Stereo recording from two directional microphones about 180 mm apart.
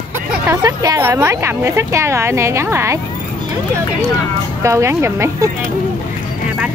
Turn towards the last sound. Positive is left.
turn(degrees=-15)  # may be behind; listen again after turning